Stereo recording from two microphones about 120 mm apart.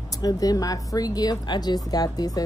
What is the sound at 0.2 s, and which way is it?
Speech, 30° left (ahead or behind).